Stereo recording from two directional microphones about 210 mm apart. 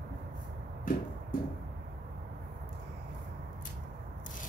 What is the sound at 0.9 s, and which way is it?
Music, 40° left (ahead or behind).